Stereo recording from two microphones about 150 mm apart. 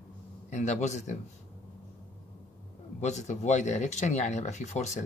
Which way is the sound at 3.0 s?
50° left (ahead or behind).